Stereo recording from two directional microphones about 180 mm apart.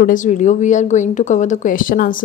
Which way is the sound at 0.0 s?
45° left (ahead or behind).